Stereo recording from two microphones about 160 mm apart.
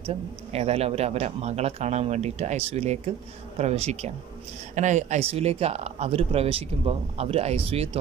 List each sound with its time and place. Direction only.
0.0 s speech: 40° right (ahead or behind)